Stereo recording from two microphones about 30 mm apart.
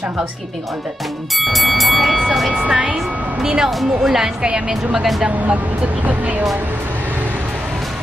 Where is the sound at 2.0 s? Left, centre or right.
Centre.